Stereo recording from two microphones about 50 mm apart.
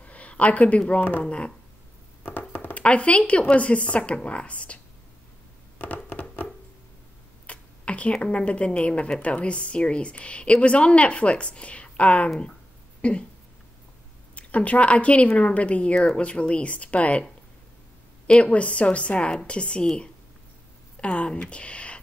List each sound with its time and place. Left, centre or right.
0.0 s a sound: left
2.7 s a woman's voice: left
6.0 s hands: left
7.4 s a woman's voice: left
14.3 s a woman's voice: left
18.2 s a woman's voice: left
21.0 s speech: left